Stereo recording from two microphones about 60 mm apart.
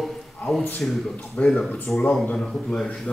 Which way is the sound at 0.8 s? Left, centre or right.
Left.